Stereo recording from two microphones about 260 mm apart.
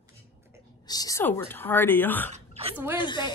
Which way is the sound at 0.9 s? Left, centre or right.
Centre.